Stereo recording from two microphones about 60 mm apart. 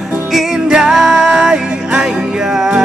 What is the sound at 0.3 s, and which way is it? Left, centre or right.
Music, centre.